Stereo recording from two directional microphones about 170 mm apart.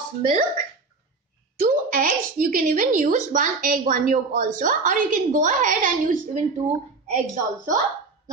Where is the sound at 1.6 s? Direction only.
55° right (ahead or behind).